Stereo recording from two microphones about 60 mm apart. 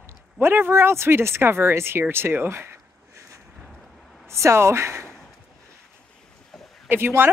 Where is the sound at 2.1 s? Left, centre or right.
Right.